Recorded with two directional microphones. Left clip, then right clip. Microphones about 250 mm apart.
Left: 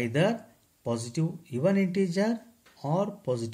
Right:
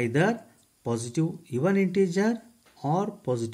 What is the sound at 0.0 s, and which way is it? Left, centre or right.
Speech, centre.